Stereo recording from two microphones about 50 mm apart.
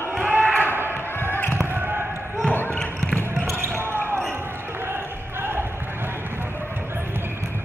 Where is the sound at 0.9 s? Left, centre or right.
Left.